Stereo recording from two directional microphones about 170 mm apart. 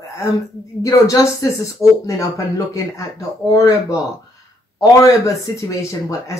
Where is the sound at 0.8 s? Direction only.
20° left (ahead or behind).